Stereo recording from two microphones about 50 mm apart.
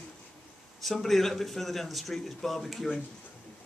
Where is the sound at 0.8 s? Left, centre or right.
Centre.